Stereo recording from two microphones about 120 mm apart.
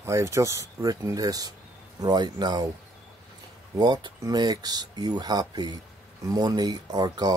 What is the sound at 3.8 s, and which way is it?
Speech, 35° right (ahead or behind).